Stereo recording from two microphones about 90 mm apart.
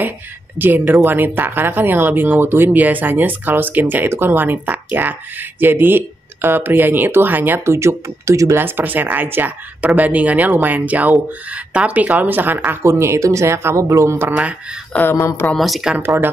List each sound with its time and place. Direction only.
0.6 s speech: 20° right (ahead or behind)
8.6 s speech: 20° right (ahead or behind)
15.0 s speech: 30° left (ahead or behind)
15.4 s speech: centre (ahead or behind)